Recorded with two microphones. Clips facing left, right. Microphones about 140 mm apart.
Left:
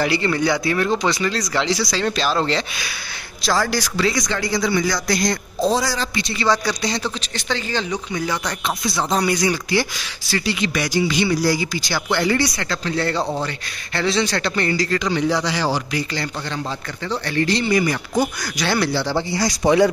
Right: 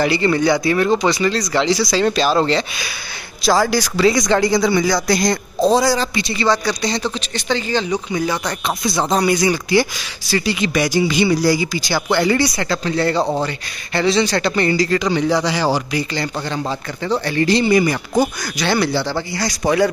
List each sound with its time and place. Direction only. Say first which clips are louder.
0.0 s speech: right 4 dB; centre (ahead or behind)
1.9 s speech: right 5 dB; 15° right (ahead or behind)
2.1 s speech: right 4 dB; 5° right (ahead or behind); by 6.0 s 20° right (ahead or behind)
6.1 s speech: right 3 dB; centre (ahead or behind)
6.5 s speech: even; 10° left (ahead or behind)
9.2 s speech: right 3 dB; 10° right (ahead or behind); by 19.8 s 5° left (ahead or behind)